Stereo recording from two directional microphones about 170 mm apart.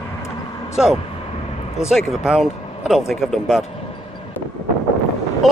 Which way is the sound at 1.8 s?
Centre (ahead or behind).